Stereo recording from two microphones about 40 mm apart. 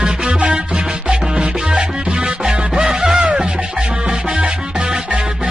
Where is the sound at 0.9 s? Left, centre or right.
Centre.